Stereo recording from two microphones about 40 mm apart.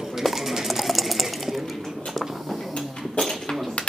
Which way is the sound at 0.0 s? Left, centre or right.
Centre.